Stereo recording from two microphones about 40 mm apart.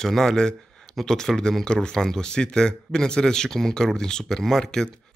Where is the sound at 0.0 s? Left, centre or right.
Centre.